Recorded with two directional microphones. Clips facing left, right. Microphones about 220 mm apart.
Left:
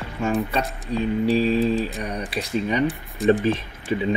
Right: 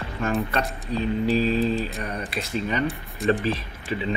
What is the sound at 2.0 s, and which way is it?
Speech, 15° left (ahead or behind).